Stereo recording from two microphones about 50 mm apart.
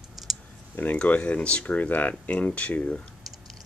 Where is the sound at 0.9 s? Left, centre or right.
Left.